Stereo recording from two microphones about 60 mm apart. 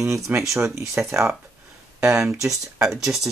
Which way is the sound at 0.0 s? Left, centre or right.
Right.